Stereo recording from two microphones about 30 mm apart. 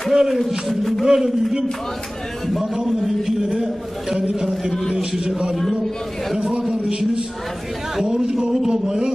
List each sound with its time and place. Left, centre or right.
0.1 s speech: right
0.7 s a man's voice: centre
1.0 s a man's voice: centre
2.9 s a man's voice: centre
3.3 s a man's voice: centre
3.5 s a man's voice: centre
6.3 s a man's voice: right
7.9 s a man's voice: centre